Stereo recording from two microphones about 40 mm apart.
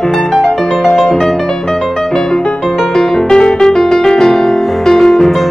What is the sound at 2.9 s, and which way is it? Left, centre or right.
Music, centre.